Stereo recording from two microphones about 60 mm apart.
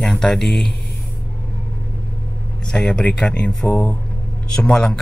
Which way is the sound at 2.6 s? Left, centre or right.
Centre.